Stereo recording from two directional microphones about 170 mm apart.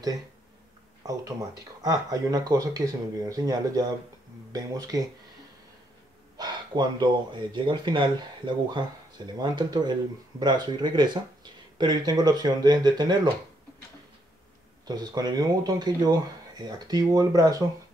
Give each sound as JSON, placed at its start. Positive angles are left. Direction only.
{"t": 1.0, "sound": "speech", "side_deg": -20}
{"t": 6.3, "sound": "speech", "side_deg": -25}
{"t": 14.9, "sound": "speech", "side_deg": -25}